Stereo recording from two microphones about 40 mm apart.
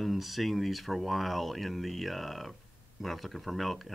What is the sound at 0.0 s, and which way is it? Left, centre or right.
Speech, centre.